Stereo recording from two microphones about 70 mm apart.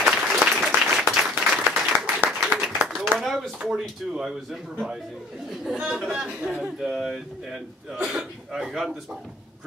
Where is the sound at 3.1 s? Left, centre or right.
Centre.